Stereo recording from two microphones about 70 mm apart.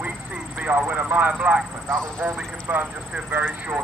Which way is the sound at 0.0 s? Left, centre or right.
Centre.